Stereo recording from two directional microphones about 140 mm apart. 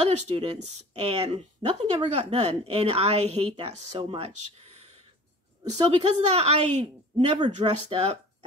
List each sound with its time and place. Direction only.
0.4 s a woman's voice: 50° right (ahead or behind)
5.7 s a woman's voice: 50° right (ahead or behind)
7.3 s speech: 40° right (ahead or behind)